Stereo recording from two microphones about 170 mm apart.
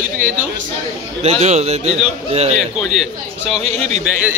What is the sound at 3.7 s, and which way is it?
Speech, 40° right (ahead or behind).